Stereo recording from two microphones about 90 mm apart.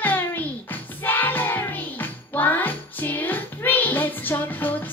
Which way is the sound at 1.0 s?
20° left (ahead or behind).